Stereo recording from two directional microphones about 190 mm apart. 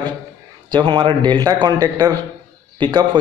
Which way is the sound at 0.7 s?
25° right (ahead or behind).